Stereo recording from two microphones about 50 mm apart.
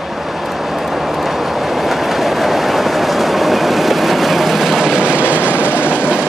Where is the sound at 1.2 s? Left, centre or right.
Centre.